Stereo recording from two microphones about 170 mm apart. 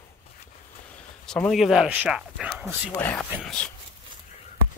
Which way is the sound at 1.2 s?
5° left (ahead or behind).